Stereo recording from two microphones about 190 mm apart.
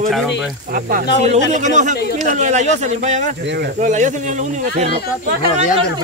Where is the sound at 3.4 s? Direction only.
60° right (ahead or behind).